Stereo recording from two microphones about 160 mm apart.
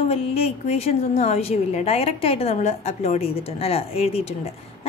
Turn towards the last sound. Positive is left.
turn(degrees=40)  # may be behind; listen again after turning